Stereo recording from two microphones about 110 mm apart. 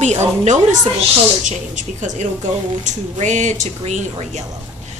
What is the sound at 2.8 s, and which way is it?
A woman's voice, 90° right.